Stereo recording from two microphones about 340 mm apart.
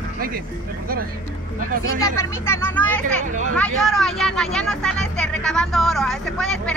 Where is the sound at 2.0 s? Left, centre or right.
Centre.